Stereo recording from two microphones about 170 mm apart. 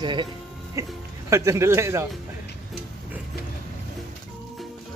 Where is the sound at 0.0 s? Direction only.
25° right (ahead or behind).